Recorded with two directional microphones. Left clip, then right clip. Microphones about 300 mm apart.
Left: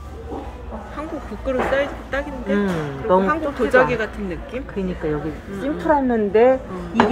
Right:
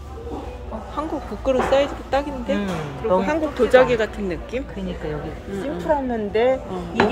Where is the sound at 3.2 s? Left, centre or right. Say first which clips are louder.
Even; centre.